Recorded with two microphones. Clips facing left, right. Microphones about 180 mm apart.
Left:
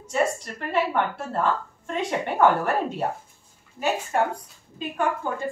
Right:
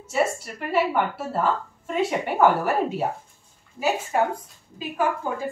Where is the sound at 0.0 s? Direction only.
5° right (ahead or behind).